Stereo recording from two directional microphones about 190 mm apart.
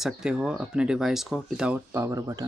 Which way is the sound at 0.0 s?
5° right (ahead or behind).